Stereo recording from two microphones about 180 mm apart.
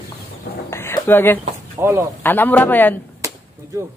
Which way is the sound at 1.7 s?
15° right (ahead or behind).